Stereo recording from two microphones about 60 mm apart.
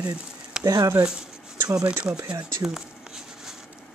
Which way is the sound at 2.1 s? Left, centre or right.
Right.